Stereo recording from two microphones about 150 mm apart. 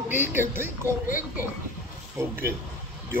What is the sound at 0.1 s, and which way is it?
Speech, 15° right (ahead or behind).